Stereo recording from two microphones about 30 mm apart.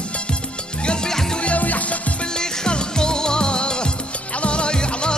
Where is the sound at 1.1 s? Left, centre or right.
Centre.